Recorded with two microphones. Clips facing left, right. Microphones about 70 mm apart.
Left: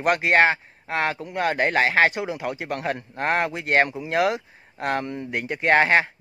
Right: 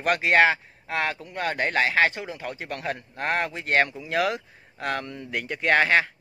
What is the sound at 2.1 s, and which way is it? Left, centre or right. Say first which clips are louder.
Speech: left 6 dB; centre.